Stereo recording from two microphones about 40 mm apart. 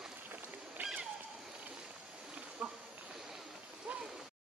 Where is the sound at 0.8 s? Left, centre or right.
Right.